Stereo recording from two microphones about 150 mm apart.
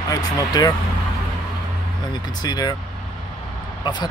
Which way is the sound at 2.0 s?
25° left (ahead or behind).